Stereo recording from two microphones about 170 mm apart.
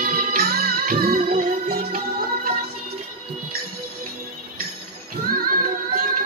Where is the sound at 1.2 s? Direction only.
40° right (ahead or behind).